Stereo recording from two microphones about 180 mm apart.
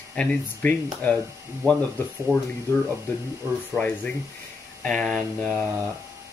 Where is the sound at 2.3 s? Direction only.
15° right (ahead or behind).